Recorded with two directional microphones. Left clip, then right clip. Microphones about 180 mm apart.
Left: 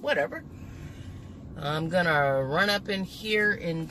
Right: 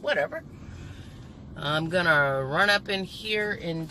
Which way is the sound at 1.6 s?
15° left (ahead or behind).